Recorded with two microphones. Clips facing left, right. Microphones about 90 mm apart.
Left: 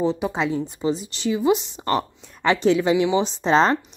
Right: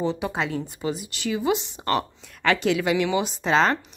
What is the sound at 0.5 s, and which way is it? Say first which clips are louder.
A woman's voice: left 5 dB; 20° left (ahead or behind).